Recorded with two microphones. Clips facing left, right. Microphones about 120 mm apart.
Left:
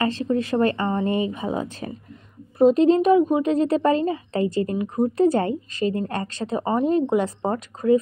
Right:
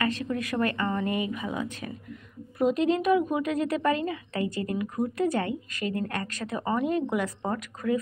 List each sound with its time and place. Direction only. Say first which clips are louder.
0.0 s a woman's voice: left 6 dB; 30° left (ahead or behind)